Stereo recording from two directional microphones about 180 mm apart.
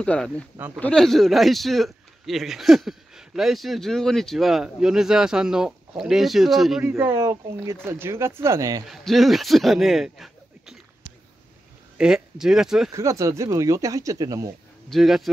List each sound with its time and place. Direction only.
0.0 s a man's voice: 5° left (ahead or behind)
6.8 s speech: 10° right (ahead or behind)
8.8 s a man's voice: centre (ahead or behind)
12.0 s a man's voice: 5° right (ahead or behind)
12.9 s speech: 15° right (ahead or behind)
14.9 s a man's voice: centre (ahead or behind)